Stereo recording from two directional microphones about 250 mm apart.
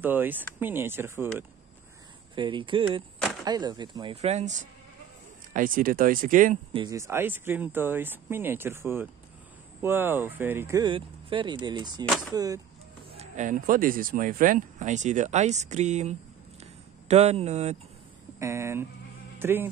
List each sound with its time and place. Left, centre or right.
0.0 s speech: centre
2.3 s speech: centre
6.8 s speech: centre
13.2 s speech: right
18.4 s speech: centre